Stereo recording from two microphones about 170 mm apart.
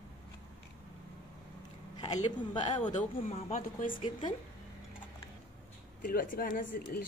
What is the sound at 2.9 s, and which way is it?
Speech, 45° left (ahead or behind).